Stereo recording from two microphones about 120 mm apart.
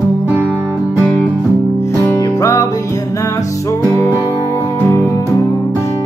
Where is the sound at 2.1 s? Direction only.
30° left (ahead or behind).